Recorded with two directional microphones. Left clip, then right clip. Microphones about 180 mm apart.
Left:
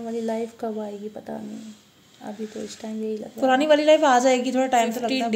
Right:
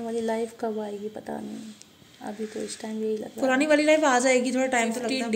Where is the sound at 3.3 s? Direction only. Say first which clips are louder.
Left 4 dB; 30° left (ahead or behind).